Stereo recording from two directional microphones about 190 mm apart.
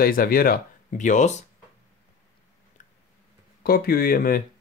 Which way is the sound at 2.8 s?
40° left (ahead or behind).